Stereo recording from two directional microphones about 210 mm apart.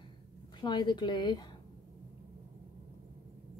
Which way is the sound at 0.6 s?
20° left (ahead or behind).